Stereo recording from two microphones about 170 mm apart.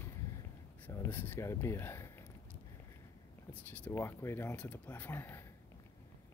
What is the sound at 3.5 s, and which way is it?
Speech, 10° left (ahead or behind).